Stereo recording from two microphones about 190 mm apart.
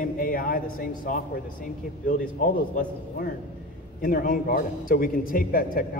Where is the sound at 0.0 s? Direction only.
45° left (ahead or behind).